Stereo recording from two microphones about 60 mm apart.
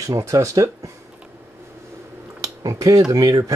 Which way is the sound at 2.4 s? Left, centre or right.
Right.